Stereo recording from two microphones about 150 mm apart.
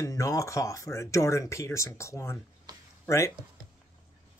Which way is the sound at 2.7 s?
25° right (ahead or behind).